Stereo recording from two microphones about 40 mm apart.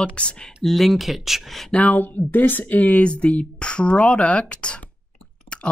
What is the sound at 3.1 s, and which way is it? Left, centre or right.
Speech, left.